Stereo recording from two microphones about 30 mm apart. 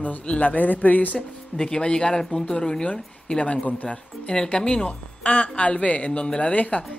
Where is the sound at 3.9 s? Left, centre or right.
Left.